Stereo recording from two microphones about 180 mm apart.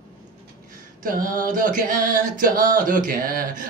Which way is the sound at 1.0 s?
50° right (ahead or behind).